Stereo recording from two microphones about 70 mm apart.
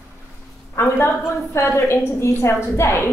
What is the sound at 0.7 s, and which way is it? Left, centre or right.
A woman's voice, left.